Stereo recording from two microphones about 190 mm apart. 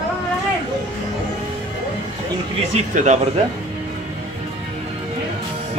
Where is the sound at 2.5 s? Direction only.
35° right (ahead or behind).